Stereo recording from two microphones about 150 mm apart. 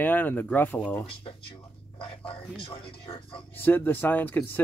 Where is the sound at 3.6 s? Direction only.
15° left (ahead or behind).